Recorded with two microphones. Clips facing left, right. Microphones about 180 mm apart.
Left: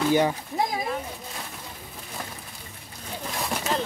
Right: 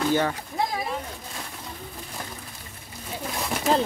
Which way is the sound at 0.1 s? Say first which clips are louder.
Left 5 dB; 15° left (ahead or behind).